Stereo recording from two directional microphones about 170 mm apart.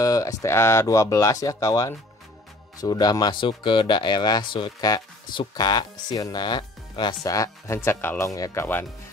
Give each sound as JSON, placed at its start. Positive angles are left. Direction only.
{"t": 0.0, "sound": "speech", "side_deg": 20}